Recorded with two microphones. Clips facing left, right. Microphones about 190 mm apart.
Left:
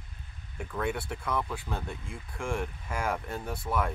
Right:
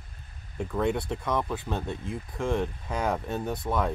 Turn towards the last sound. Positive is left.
turn(degrees=-20)  # may be behind; listen again after turning